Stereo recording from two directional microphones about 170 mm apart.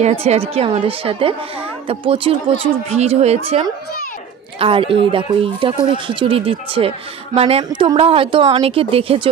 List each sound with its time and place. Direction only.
0.0 s a woman's voice: 40° right (ahead or behind)